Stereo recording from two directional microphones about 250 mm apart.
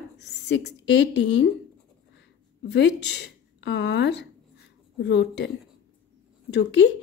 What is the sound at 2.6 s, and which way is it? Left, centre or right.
A woman's voice, left.